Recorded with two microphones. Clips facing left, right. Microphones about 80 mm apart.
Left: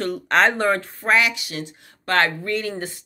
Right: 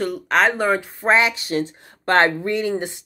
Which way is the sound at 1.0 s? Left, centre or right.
Right.